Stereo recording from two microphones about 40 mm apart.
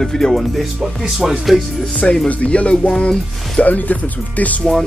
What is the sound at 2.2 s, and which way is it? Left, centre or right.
Speech, left.